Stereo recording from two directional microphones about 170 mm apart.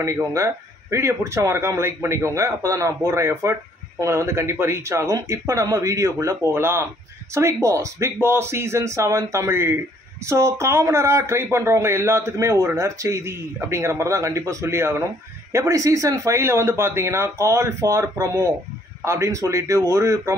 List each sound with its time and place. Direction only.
0.0 s speech: 15° right (ahead or behind)